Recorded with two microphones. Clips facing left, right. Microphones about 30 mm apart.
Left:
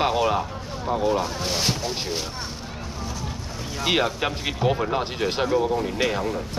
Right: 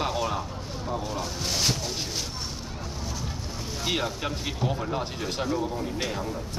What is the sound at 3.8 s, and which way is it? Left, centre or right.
Speech, left.